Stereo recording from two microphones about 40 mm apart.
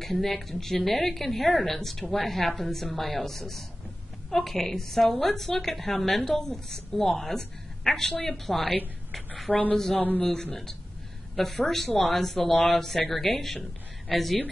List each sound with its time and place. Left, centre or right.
0.0 s a woman's voice: centre
9.5 s speech: left
10.2 s a woman's voice: centre